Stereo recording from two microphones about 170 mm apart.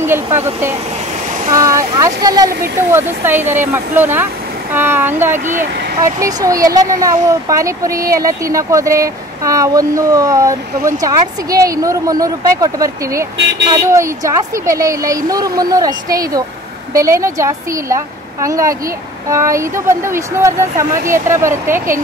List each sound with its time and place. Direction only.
0.0 s a woman's voice: 15° right (ahead or behind)
5.4 s speech: 50° right (ahead or behind)
5.9 s a child's voice: 20° right (ahead or behind)